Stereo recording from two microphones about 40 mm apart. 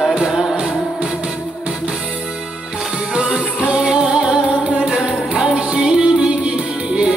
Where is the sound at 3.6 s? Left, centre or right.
Right.